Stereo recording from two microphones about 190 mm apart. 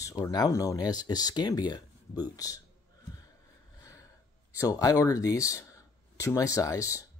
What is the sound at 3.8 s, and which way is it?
Snort, 15° left (ahead or behind).